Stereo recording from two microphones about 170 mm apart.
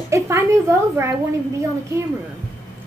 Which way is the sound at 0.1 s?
15° right (ahead or behind).